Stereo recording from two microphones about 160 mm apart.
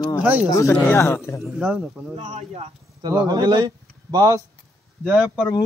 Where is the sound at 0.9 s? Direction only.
15° left (ahead or behind).